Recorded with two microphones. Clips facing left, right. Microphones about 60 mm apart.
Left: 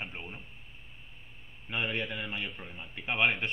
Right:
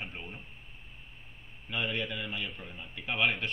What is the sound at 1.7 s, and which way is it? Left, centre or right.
A man's voice, left.